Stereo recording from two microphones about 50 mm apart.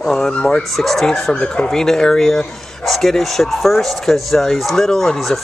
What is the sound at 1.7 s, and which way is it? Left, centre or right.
Speech, centre.